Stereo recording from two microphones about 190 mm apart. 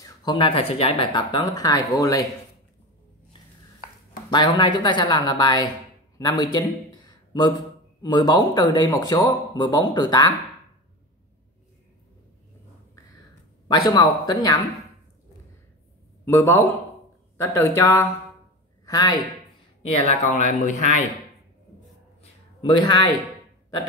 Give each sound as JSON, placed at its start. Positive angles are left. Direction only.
{"t": 0.0, "sound": "speech", "side_deg": 20}
{"t": 4.3, "sound": "speech", "side_deg": 25}
{"t": 6.1, "sound": "a sound", "side_deg": 20}
{"t": 8.0, "sound": "speech", "side_deg": 20}
{"t": 13.7, "sound": "speech", "side_deg": 20}
{"t": 16.3, "sound": "a man's voice", "side_deg": 15}
{"t": 19.8, "sound": "speech", "side_deg": 35}
{"t": 22.2, "sound": "a sound", "side_deg": 25}